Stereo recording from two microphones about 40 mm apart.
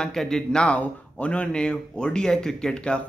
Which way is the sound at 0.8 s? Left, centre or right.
Left.